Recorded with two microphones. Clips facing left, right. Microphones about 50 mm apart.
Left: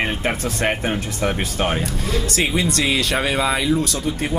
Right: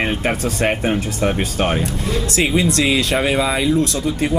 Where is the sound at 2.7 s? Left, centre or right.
Right.